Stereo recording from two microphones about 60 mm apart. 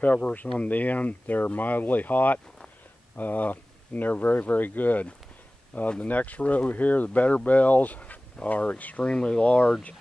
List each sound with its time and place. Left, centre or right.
0.0 s speech: left
9.1 s speech: centre